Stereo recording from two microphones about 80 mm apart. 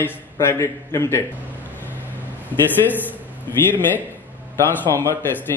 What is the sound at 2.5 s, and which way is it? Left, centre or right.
A man's voice, left.